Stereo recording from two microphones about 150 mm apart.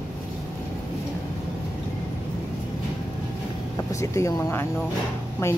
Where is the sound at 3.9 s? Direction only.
20° left (ahead or behind).